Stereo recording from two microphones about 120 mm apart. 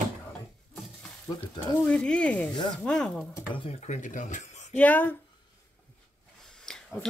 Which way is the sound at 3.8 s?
85° left.